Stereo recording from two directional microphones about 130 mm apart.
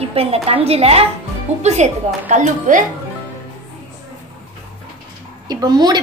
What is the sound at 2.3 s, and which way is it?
Speech, 75° right (ahead or behind).